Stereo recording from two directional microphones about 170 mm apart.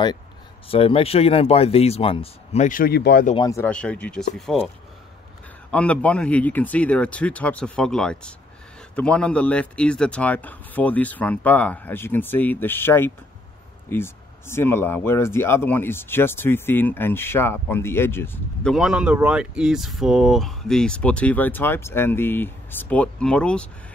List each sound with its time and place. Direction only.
0.7 s speech: 35° left (ahead or behind)
2.7 s speech: 60° left (ahead or behind)
3.3 s speech: 20° left (ahead or behind)
3.7 s speech: 5° left (ahead or behind)
5.7 s speech: 5° left (ahead or behind)